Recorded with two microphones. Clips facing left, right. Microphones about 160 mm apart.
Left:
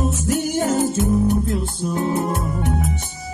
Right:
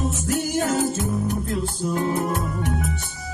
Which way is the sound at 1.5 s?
20° left (ahead or behind).